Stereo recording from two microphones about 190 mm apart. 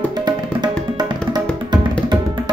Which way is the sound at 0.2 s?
20° right (ahead or behind).